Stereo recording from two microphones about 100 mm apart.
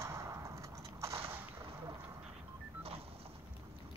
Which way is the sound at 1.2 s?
20° right (ahead or behind).